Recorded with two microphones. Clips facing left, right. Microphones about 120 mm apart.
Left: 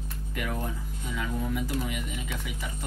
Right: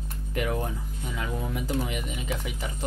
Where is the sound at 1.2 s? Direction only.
30° right (ahead or behind).